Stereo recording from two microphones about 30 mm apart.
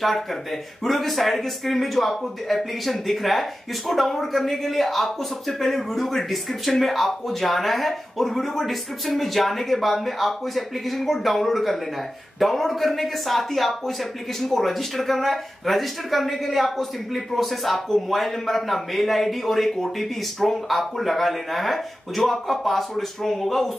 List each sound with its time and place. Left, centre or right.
0.0 s speech: centre